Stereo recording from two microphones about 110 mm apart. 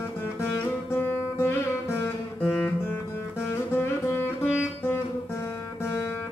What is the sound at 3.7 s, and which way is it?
Music, 20° left (ahead or behind).